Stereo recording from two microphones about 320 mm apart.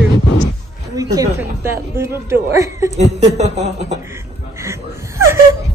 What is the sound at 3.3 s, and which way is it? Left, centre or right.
Speech, right.